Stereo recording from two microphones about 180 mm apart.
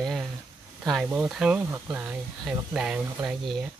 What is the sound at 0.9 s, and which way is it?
Speech, 5° right (ahead or behind).